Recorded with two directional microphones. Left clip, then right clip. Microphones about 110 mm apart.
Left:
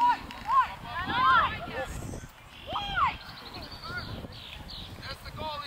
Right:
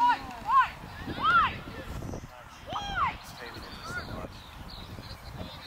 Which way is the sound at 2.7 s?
5° left (ahead or behind).